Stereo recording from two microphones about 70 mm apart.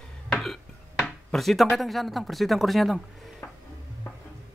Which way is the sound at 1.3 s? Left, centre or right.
Centre.